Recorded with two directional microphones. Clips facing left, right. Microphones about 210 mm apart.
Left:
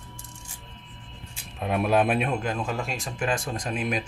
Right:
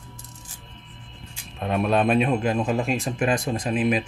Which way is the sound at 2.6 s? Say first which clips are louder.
Right 7 dB; 20° right (ahead or behind).